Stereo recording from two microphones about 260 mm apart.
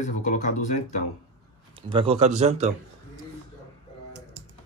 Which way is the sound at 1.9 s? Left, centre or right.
Right.